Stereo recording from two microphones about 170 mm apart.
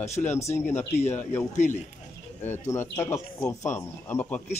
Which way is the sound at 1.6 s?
45° left (ahead or behind).